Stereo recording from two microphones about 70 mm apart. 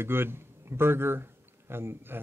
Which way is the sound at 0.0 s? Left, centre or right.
Right.